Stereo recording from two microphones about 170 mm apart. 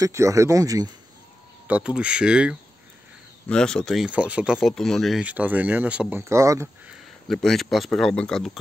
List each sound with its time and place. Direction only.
0.0 s speech: 15° right (ahead or behind)
1.7 s speech: 5° right (ahead or behind)
6.9 s speech: centre (ahead or behind)